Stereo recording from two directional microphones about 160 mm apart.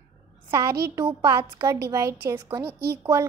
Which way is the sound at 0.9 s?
25° right (ahead or behind).